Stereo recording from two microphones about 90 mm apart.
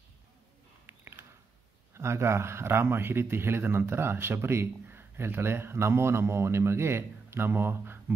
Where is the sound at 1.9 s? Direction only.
30° right (ahead or behind).